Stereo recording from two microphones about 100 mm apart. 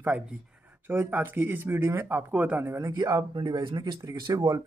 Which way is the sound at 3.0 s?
45° right (ahead or behind).